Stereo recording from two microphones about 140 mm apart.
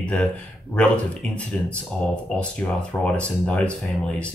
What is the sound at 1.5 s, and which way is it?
Speech, 10° left (ahead or behind).